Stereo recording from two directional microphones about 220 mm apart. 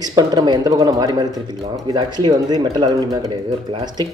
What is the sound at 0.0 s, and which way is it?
Speech, 20° right (ahead or behind).